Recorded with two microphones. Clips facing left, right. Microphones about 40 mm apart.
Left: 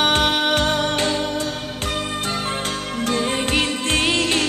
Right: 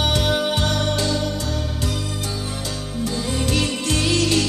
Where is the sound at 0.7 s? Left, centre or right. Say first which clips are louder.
Left 2 dB; left.